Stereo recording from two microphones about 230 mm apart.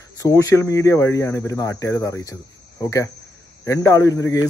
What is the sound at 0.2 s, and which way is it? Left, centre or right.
Speech, centre.